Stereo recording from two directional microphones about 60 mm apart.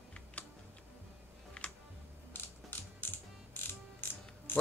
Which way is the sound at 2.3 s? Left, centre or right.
Left.